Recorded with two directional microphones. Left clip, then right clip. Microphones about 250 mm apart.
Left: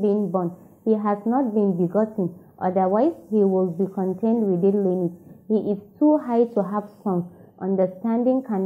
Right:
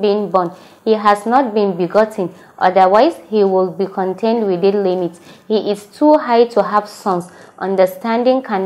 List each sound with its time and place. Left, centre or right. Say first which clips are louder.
0.2 s a woman's voice: right 10 dB; right
0.8 s a woman's voice: right 10 dB; centre
3.4 s a woman's voice: right 7 dB; right; by 5.8 s centre
5.9 s a woman's voice: right 8 dB; right
6.2 s a woman's voice: right 9 dB; centre
6.5 s a woman's voice: right 11 dB; centre